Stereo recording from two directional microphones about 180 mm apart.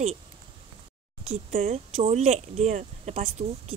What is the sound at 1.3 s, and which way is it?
Speech, 35° right (ahead or behind).